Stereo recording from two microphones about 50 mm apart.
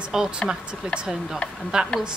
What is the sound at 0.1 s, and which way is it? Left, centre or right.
Speech, centre.